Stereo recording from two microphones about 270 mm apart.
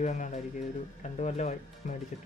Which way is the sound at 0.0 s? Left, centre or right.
Left.